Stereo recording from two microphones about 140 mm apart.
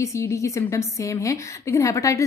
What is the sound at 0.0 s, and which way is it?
A woman's voice, 20° left (ahead or behind).